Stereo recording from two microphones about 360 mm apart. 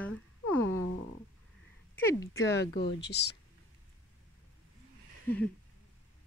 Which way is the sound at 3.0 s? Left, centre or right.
Left.